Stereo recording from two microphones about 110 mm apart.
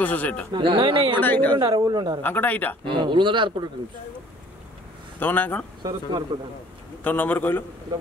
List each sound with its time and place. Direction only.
0.0 s a man's voice: 15° left (ahead or behind)
0.5 s speech: 50° right (ahead or behind)
1.2 s a man's voice: 15° left (ahead or behind)
1.6 s a man's voice: 40° right (ahead or behind)
2.2 s a man's voice: 15° left (ahead or behind)
2.8 s speech: 50° right (ahead or behind)
5.2 s a man's voice: 15° left (ahead or behind)
5.8 s a man's voice: 40° right (ahead or behind)
7.0 s a man's voice: 15° left (ahead or behind)